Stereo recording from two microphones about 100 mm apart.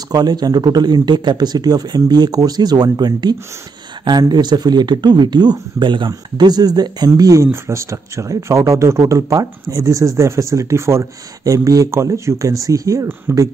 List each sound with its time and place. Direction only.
0.1 s speech: 40° right (ahead or behind)